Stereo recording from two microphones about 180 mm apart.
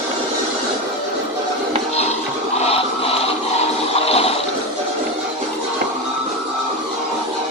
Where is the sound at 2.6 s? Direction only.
35° left (ahead or behind).